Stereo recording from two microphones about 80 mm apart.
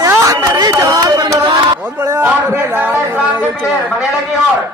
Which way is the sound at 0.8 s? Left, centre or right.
Right.